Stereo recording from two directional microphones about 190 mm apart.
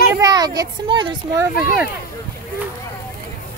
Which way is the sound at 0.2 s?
20° right (ahead or behind).